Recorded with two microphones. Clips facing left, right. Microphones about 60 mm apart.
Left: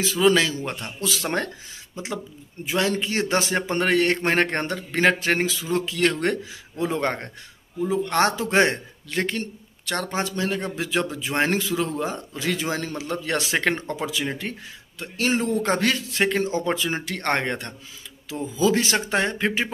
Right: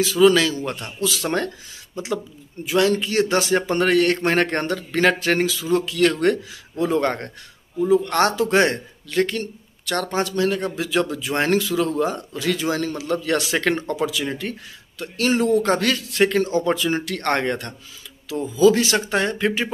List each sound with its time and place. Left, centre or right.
0.0 s speech: left
2.6 s speech: left
6.8 s speech: centre